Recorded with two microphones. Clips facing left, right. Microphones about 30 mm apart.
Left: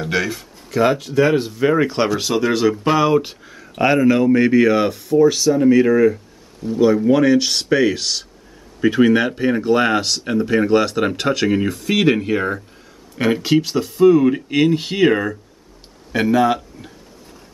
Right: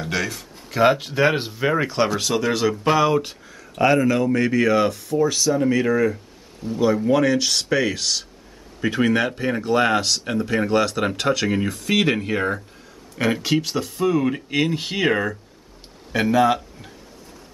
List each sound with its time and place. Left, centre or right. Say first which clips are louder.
0.0 s speech: left 4 dB; centre
0.7 s speech: left 1 dB; centre
0.9 s speech: left 4 dB; right
2.1 s speech: left 3 dB; centre